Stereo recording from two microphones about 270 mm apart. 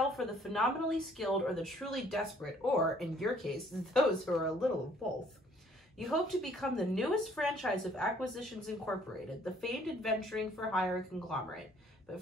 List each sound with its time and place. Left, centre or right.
0.0 s a woman's voice: centre
5.9 s a woman's voice: centre